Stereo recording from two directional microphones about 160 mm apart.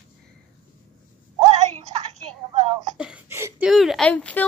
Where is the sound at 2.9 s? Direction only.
5° right (ahead or behind).